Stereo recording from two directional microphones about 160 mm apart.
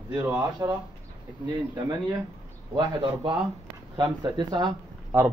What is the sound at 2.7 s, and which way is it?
Speech, 30° right (ahead or behind).